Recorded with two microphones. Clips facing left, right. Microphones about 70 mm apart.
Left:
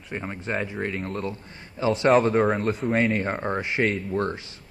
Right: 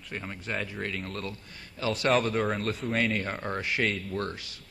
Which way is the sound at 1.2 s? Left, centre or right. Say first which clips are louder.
Left 6 dB; left.